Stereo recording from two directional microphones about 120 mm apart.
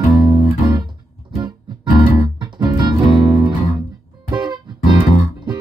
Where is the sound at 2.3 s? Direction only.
40° right (ahead or behind).